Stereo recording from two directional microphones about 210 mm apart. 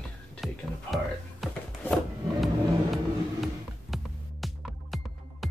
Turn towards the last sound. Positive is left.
turn(degrees=0)  # may be behind; listen again after turning